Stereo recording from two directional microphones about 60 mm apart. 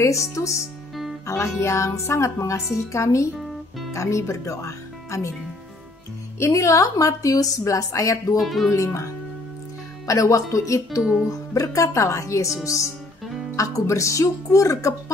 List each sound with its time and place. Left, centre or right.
0.0 s speech: left
6.5 s a woman's voice: left
8.4 s speech: centre
8.7 s a woman's voice: left
11.0 s speech: centre
11.5 s speech: left
13.6 s speech: left